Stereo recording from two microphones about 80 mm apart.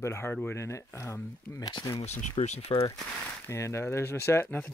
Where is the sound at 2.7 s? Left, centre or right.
Left.